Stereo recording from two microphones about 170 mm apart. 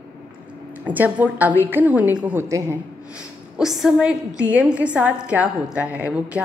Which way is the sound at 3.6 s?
Centre (ahead or behind).